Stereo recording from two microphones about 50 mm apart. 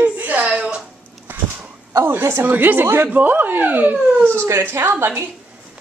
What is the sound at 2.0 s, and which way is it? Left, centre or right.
Speech, right.